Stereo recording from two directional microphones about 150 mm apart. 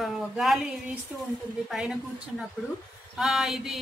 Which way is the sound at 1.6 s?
5° right (ahead or behind).